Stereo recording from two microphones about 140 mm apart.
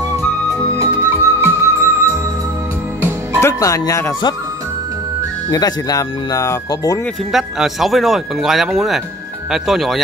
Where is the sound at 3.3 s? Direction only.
20° left (ahead or behind).